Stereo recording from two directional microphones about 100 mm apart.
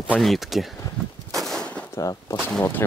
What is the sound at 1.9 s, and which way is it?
Speech, 35° left (ahead or behind).